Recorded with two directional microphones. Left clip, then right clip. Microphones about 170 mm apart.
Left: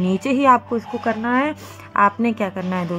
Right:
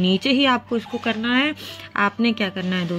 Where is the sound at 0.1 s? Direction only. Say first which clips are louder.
Left 5 dB; 35° right (ahead or behind).